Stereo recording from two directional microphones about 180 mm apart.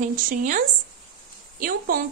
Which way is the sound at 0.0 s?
45° right (ahead or behind).